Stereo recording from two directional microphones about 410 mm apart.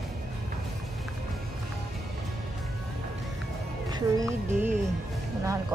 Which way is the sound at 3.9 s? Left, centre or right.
Centre.